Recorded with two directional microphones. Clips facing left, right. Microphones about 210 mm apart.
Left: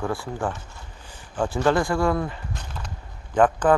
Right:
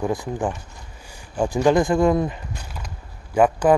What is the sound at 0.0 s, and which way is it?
Speech, 15° right (ahead or behind).